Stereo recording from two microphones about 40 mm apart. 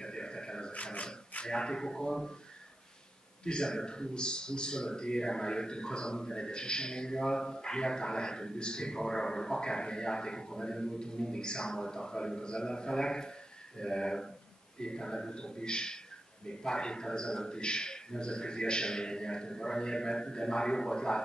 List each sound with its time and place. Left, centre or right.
0.0 s a sound: centre
1.4 s a man's voice: centre
3.4 s a man's voice: centre